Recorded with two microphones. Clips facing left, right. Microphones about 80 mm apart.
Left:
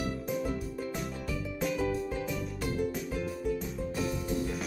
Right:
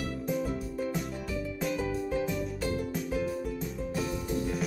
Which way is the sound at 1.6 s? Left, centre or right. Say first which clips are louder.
Left 2 dB; centre.